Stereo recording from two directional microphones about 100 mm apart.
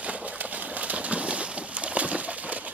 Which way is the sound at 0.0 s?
15° right (ahead or behind).